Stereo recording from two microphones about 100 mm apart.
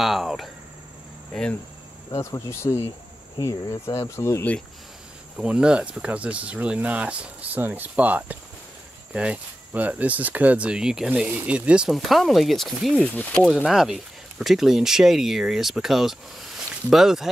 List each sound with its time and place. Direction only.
0.0 s speech: centre (ahead or behind)
1.3 s speech: 10° left (ahead or behind)
2.1 s cricket: 30° left (ahead or behind)
3.3 s speech: 40° left (ahead or behind)
3.8 s cricket: 30° left (ahead or behind)
5.4 s speech: 10° right (ahead or behind)
13.1 s speech: 15° left (ahead or behind)
13.7 s speech: 5° right (ahead or behind)